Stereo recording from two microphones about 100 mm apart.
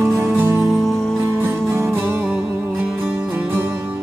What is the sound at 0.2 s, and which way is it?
Music, 25° right (ahead or behind).